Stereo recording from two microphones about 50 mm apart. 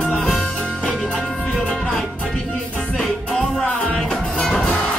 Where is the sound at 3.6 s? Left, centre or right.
Left.